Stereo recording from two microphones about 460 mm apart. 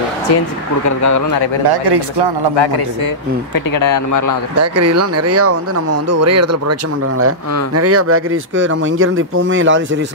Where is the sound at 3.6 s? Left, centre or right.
Left.